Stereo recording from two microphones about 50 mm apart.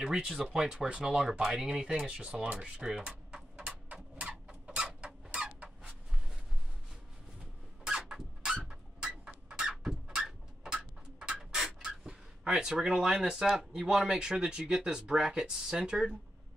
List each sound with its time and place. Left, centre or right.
0.2 s speech: centre
0.5 s speech: centre
1.3 s speech: centre
2.8 s a sound: centre
3.9 s a sound: right
4.5 s chicken: centre
7.8 s vehicle: centre
8.6 s a sound: centre
11.5 s writing: centre
13.5 s speech: centre